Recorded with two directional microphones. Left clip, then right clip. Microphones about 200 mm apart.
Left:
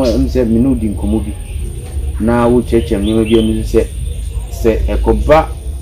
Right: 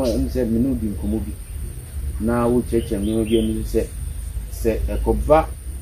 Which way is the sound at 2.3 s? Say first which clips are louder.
Left 8 dB; centre (ahead or behind).